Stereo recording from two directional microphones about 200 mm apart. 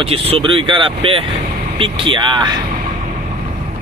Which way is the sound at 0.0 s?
30° right (ahead or behind).